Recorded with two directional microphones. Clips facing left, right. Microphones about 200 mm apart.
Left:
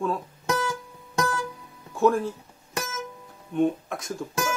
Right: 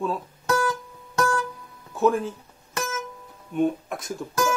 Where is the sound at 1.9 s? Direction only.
Centre (ahead or behind).